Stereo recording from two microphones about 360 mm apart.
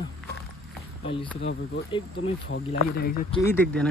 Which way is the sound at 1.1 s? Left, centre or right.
Left.